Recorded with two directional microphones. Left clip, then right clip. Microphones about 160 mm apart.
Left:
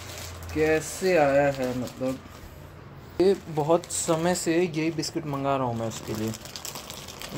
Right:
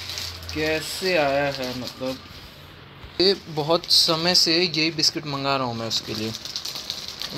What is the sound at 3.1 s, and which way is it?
Speech, 5° left (ahead or behind).